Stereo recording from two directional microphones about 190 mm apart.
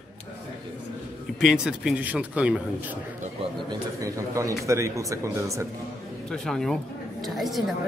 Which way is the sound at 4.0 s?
15° right (ahead or behind).